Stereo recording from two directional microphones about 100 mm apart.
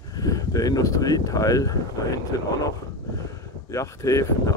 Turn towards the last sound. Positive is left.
turn(degrees=30)  # may be behind; listen again after turning